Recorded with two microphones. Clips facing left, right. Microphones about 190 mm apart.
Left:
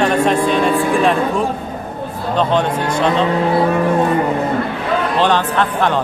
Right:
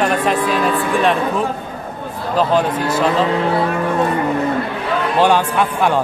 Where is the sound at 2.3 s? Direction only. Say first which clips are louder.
Even; 5° right (ahead or behind).